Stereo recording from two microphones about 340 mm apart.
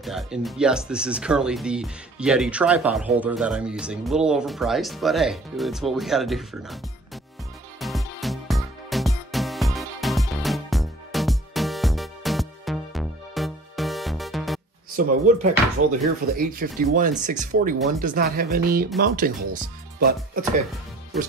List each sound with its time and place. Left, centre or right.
0.0 s speech: centre
7.8 s music: centre
15.0 s speech: right
15.8 s speech: right
16.2 s speech: right